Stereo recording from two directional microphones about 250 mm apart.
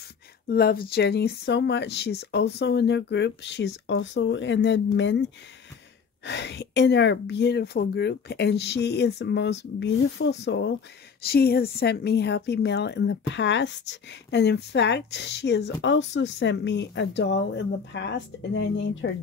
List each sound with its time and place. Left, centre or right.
0.5 s a woman's voice: left
6.2 s a woman's voice: left